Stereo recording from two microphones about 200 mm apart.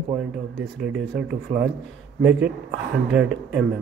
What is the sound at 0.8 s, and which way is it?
Speech, 5° right (ahead or behind).